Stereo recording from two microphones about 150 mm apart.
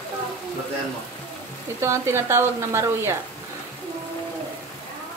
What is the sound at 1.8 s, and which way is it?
Speech, 20° right (ahead or behind).